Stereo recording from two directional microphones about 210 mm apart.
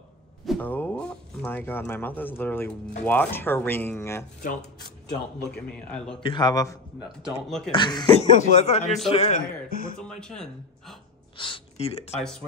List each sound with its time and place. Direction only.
0.5 s speech: 10° left (ahead or behind)
4.4 s speech: 40° left (ahead or behind)
5.7 s speech: 5° left (ahead or behind)
6.2 s a man's voice: 20° left (ahead or behind)
7.4 s speech: centre (ahead or behind)
7.7 s speech: 20° left (ahead or behind)
8.8 s speech: centre (ahead or behind)
9.1 s a man's voice: 30° left (ahead or behind)
9.7 s speech: 40° left (ahead or behind)
10.0 s speech: 5° left (ahead or behind)
11.3 s a sound: 25° left (ahead or behind)
12.2 s speech: 5° left (ahead or behind)